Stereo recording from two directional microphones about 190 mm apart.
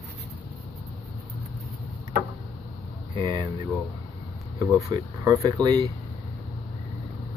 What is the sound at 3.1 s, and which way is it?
Speech, 20° right (ahead or behind).